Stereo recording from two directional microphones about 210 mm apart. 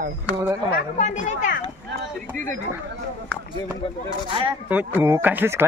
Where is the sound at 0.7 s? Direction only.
35° left (ahead or behind).